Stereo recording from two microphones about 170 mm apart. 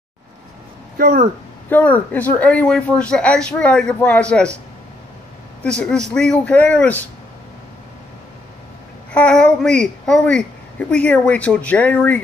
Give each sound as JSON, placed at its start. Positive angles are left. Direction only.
{"t": 0.9, "sound": "speech", "side_deg": -60}
{"t": 1.7, "sound": "a child's voice", "side_deg": 10}
{"t": 5.6, "sound": "a child's voice", "side_deg": 5}
{"t": 9.1, "sound": "a child's voice", "side_deg": 5}